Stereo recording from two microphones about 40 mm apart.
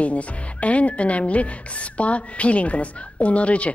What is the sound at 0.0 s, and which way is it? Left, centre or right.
Speech, left.